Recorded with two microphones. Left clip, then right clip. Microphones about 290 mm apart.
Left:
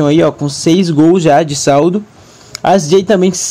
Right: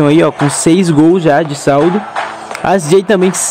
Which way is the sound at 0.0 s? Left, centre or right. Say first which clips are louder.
Right 1 dB; centre.